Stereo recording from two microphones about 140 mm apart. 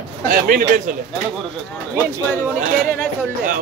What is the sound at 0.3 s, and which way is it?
Speech, 90° right.